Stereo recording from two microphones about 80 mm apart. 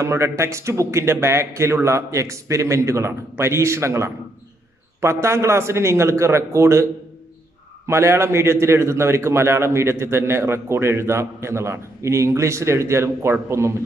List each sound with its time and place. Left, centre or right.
0.0 s a man's voice: right